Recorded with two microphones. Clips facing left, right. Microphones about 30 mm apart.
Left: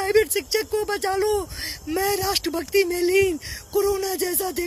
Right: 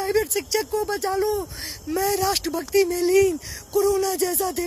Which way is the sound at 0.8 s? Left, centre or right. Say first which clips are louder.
Left 1 dB; left.